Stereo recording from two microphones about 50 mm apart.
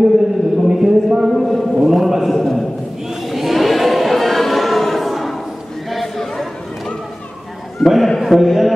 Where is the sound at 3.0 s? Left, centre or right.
Centre.